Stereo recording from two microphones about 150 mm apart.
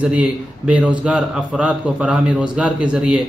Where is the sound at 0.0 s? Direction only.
5° right (ahead or behind).